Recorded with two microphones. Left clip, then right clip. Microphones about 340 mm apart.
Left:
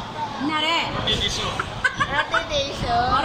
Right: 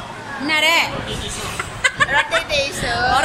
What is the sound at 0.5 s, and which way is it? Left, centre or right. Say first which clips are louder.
Speech: right 7 dB; centre.